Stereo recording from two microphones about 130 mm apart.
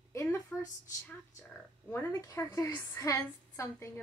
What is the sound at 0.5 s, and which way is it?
A woman's voice, 10° left (ahead or behind).